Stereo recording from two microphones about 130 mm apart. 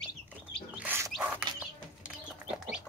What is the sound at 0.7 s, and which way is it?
Bird, 10° right (ahead or behind).